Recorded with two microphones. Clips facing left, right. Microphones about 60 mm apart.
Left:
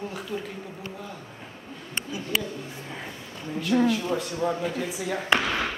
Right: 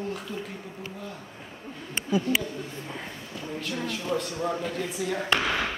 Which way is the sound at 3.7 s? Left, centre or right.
Left.